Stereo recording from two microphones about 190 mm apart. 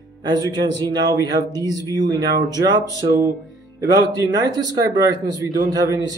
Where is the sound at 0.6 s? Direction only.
20° right (ahead or behind).